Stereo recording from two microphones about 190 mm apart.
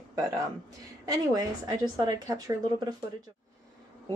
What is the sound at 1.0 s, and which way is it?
A woman's voice, 20° right (ahead or behind).